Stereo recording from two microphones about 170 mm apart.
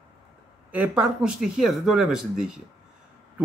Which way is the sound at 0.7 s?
10° right (ahead or behind).